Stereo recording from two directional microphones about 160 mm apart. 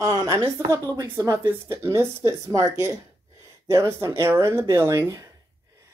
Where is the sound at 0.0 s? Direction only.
20° right (ahead or behind).